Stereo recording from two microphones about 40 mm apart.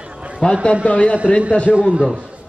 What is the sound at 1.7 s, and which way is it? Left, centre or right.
Speech, right.